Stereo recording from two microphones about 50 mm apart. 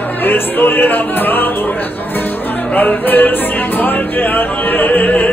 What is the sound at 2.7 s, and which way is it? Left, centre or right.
Music, left.